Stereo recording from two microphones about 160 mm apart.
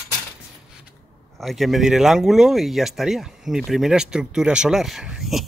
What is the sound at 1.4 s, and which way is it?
Speech, centre (ahead or behind).